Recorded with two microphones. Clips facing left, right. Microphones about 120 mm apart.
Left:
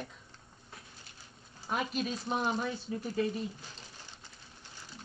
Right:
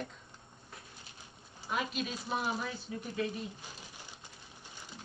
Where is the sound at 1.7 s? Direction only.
40° left (ahead or behind).